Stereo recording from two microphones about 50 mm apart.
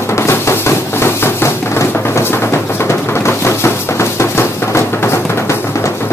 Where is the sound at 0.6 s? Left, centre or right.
Left.